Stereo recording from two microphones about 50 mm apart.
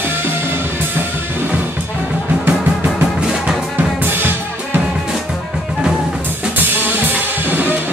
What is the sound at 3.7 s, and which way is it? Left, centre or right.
Drum kit, right.